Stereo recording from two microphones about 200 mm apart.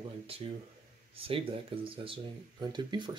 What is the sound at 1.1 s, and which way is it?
Speech, 30° right (ahead or behind).